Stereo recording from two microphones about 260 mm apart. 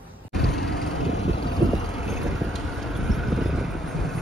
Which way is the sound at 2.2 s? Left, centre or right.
Centre.